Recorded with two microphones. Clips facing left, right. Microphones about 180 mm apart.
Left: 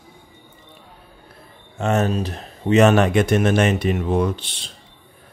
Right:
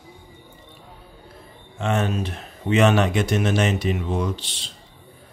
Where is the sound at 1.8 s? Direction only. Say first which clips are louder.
Left 3 dB; 40° left (ahead or behind).